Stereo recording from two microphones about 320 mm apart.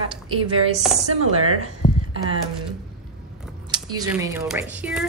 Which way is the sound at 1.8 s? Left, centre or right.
Left.